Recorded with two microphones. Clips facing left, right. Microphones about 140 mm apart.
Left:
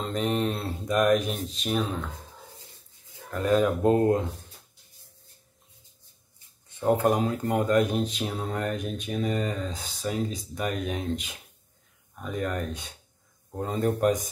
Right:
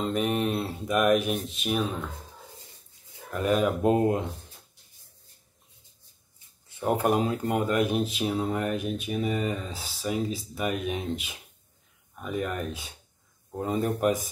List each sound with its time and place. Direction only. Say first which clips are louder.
0.0 s speech: right 1 dB; 10° right (ahead or behind)
3.3 s speech: left 1 dB; 15° right (ahead or behind)
6.8 s speech: left 1 dB; 15° right (ahead or behind)